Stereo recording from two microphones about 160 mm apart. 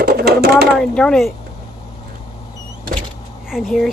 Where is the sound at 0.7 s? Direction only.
Centre (ahead or behind).